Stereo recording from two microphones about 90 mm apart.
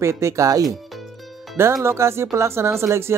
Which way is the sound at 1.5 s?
25° right (ahead or behind).